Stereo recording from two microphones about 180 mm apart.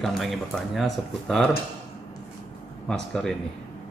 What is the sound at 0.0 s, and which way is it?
Speech, centre (ahead or behind).